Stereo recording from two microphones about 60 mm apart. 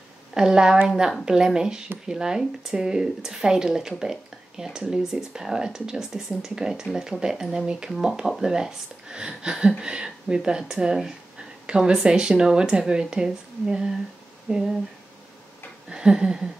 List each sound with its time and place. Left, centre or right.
0.3 s speech: centre
4.0 s a sound: centre
4.7 s speech: centre
7.9 s speech: centre
15.9 s speech: centre